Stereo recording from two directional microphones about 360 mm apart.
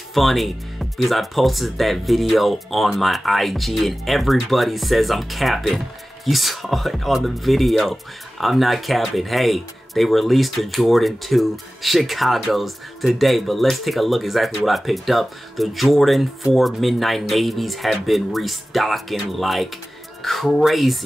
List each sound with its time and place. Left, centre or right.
0.1 s speech: centre